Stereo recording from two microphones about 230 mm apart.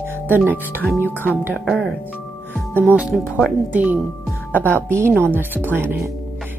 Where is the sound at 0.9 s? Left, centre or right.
Centre.